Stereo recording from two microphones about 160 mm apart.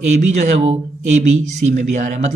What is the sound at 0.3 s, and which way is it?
Speech, 45° right (ahead or behind).